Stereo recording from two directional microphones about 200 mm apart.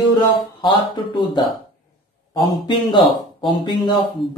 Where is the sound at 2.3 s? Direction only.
25° left (ahead or behind).